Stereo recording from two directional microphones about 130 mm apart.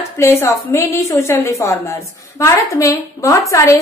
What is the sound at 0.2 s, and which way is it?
A woman's voice, 20° left (ahead or behind).